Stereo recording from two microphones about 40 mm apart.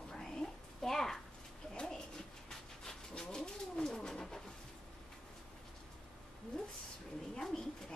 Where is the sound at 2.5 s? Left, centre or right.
Centre.